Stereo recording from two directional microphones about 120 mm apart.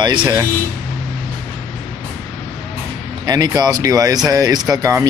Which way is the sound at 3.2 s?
35° right (ahead or behind).